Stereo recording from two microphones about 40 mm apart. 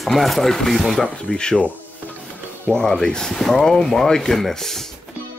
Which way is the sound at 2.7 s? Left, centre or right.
Centre.